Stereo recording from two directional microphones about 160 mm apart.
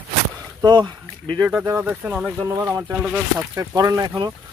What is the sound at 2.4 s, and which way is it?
Speech, 15° right (ahead or behind).